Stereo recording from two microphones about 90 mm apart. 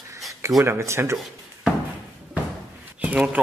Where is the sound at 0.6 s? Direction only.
30° right (ahead or behind).